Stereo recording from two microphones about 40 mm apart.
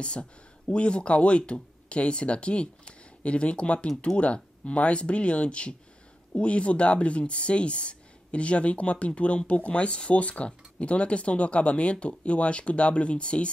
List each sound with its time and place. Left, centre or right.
0.0 s speech: left